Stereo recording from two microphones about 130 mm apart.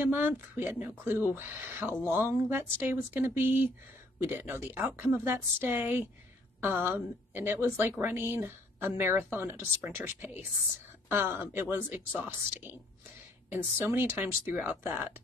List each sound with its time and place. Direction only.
0.0 s speech: 15° right (ahead or behind)
13.5 s speech: 15° right (ahead or behind)